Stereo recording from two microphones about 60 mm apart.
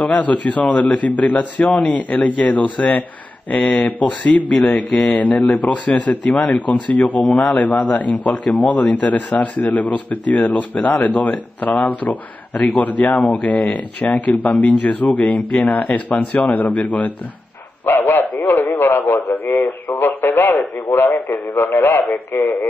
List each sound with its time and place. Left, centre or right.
0.0 s a man's voice: left
17.8 s a man's voice: left